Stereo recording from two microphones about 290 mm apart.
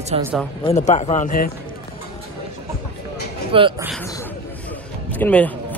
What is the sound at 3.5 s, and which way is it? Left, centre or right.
Speech, centre.